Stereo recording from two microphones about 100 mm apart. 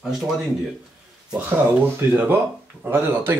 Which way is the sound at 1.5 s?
20° right (ahead or behind).